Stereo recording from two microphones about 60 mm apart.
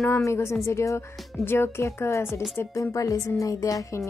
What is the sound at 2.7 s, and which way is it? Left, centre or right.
Speech, left.